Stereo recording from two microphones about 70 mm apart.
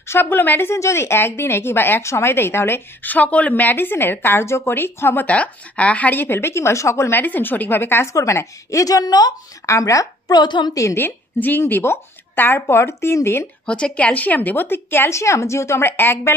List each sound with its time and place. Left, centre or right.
0.1 s a woman's voice: left
5.2 s speech: centre; by 7.2 s left
7.2 s speech: left
8.1 s a woman's voice: left
9.7 s speech: left
10.3 s a woman's voice: left
10.7 s a woman's voice: left
11.4 s a woman's voice: left
13.7 s a woman's voice: centre; by 16.3 s left